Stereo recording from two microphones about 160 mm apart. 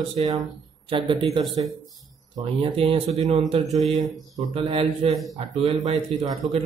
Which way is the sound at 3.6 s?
Centre (ahead or behind).